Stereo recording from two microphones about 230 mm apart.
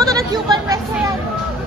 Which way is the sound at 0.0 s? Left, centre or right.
Centre.